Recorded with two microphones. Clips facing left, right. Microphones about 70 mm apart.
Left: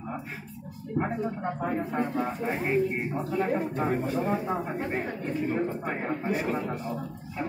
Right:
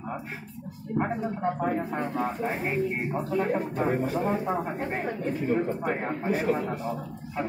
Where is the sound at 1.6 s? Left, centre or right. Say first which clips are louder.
Right 1 dB; right.